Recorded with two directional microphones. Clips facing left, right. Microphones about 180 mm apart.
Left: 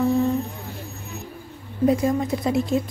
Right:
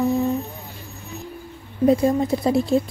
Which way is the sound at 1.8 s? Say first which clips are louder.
Right 3 dB; 30° right (ahead or behind).